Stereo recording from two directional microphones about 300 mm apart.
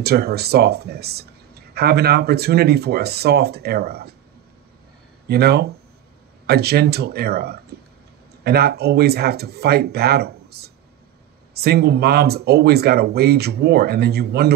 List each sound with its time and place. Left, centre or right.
0.0 s speech: right
5.3 s speech: right